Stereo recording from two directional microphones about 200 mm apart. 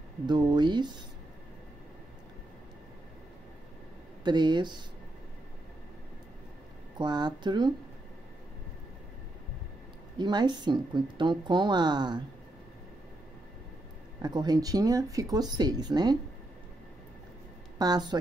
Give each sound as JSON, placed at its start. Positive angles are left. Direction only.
{"t": 0.3, "sound": "speech", "side_deg": -20}
{"t": 4.2, "sound": "speech", "side_deg": -20}
{"t": 7.0, "sound": "speech", "side_deg": -20}
{"t": 10.1, "sound": "speech", "side_deg": -20}
{"t": 14.2, "sound": "speech", "side_deg": -20}
{"t": 17.7, "sound": "a woman's voice", "side_deg": -20}